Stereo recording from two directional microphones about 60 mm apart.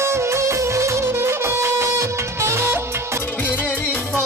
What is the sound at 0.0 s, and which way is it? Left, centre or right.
Music, right.